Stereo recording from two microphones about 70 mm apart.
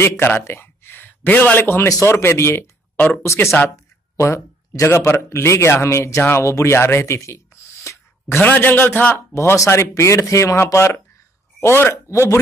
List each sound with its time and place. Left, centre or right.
0.5 s a sound: left
1.9 s speech: left
6.5 s a sound: left
8.4 s a man's voice: left
9.3 s speech: left
11.9 s speech: left